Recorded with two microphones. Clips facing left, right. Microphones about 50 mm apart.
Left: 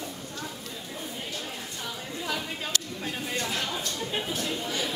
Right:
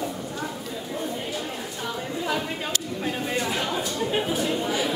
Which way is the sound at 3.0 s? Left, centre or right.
Centre.